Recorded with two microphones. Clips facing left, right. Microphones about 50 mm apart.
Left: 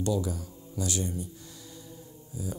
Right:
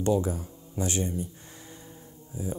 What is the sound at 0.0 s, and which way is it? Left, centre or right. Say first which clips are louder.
Speech: right 4 dB; right.